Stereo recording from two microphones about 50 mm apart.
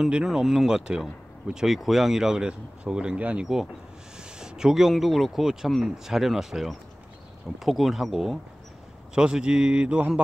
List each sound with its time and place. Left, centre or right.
0.0 s a man's voice: centre